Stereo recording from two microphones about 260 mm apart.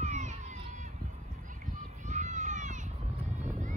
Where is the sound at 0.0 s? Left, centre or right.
Right.